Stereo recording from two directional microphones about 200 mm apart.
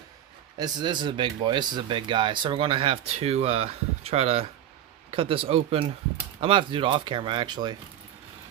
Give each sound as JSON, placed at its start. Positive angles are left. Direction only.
{"t": 0.6, "sound": "speech", "side_deg": -20}